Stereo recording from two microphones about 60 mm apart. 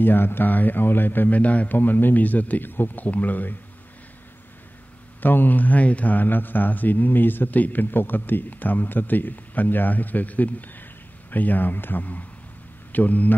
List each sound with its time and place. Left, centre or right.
0.0 s speech: left
5.2 s a man's voice: left